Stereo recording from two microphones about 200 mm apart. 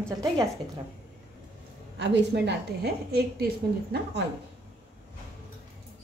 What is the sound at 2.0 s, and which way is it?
A woman's voice, 60° right (ahead or behind).